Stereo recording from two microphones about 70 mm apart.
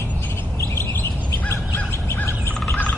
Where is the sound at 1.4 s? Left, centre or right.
Left.